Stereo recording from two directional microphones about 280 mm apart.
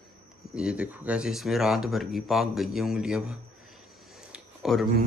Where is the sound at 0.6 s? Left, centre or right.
Centre.